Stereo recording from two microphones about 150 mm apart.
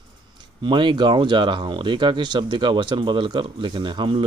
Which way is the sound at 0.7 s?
30° right (ahead or behind).